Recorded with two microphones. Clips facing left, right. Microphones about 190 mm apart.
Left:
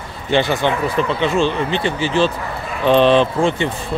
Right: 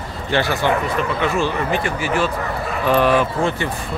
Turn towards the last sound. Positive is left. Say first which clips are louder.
# left 3 dB
turn(degrees=20)  # may be behind; listen again after turning